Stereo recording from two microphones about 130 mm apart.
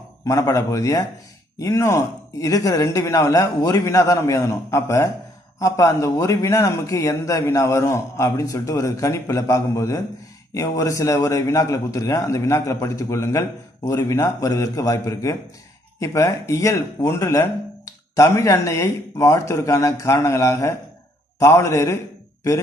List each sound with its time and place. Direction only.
0.2 s a man's voice: 25° left (ahead or behind)